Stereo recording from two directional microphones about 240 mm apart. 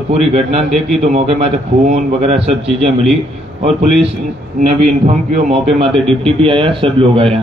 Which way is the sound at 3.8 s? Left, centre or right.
Right.